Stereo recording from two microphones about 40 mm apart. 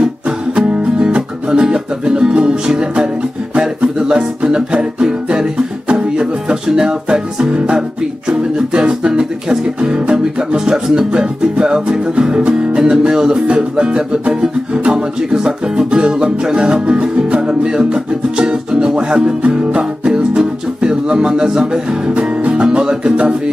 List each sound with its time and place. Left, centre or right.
0.6 s music: right